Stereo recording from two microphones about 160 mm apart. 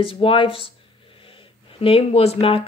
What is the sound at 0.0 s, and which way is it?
Speech, 35° left (ahead or behind).